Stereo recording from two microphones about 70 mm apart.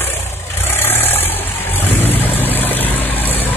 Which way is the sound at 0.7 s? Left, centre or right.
Left.